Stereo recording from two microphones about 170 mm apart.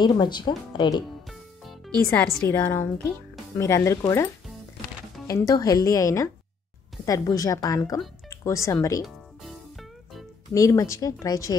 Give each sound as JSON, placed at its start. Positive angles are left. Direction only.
{"t": 0.0, "sound": "speech", "side_deg": 25}
{"t": 2.0, "sound": "a woman's voice", "side_deg": 15}
{"t": 8.3, "sound": "music", "side_deg": 15}
{"t": 9.0, "sound": "music", "side_deg": 0}
{"t": 10.5, "sound": "speech", "side_deg": 20}